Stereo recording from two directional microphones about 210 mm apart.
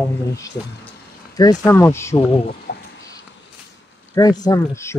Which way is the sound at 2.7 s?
50° left (ahead or behind).